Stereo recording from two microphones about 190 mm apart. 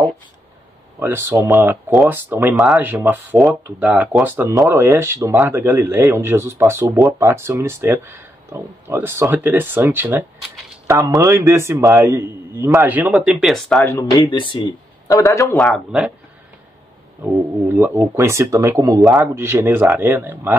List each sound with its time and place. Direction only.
0.9 s speech: 10° right (ahead or behind)
1.6 s speech: centre (ahead or behind)
13.8 s speech: 20° left (ahead or behind)
15.5 s speech: 5° left (ahead or behind)
17.7 s speech: 10° right (ahead or behind)